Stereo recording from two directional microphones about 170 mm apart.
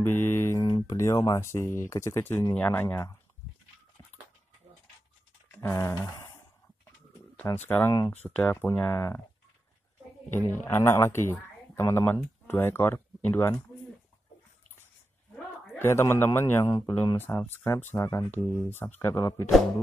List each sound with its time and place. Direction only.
0.0 s mantra: 15° left (ahead or behind)
0.7 s speech: 20° left (ahead or behind)
5.5 s a sound: 15° left (ahead or behind)
7.3 s speech: 10° left (ahead or behind)
10.5 s speech: 10° left (ahead or behind)
15.8 s speech: 15° left (ahead or behind)